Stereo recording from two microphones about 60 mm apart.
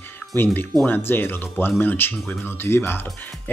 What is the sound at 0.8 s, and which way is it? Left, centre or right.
Speech, left.